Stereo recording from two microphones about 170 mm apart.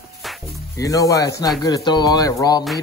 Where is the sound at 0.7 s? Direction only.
20° left (ahead or behind).